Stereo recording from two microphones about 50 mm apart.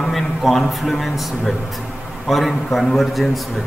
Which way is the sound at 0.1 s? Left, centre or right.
Centre.